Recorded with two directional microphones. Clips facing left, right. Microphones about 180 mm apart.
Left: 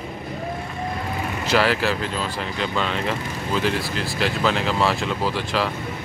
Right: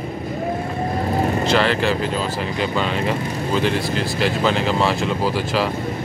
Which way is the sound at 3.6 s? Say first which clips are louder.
Right 3 dB; centre (ahead or behind).